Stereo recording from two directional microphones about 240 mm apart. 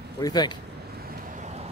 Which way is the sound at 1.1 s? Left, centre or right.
Right.